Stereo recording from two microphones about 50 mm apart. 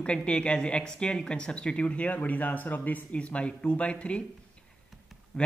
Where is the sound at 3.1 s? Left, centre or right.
Left.